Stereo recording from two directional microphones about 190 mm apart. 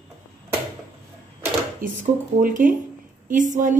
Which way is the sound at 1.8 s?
45° right (ahead or behind).